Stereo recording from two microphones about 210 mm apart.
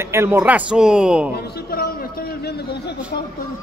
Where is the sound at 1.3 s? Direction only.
45° left (ahead or behind).